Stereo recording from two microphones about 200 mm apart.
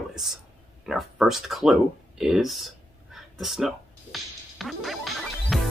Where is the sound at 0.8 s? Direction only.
Centre (ahead or behind).